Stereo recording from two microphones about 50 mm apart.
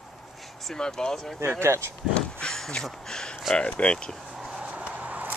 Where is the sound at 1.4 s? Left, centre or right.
Right.